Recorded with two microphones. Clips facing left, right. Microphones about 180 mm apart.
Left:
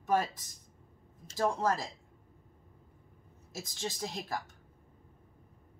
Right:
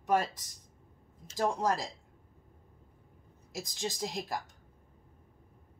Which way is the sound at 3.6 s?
15° right (ahead or behind).